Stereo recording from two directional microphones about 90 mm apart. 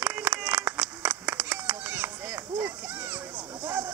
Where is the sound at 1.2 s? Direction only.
15° right (ahead or behind).